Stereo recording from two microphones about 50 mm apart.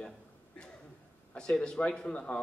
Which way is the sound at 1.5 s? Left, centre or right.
Centre.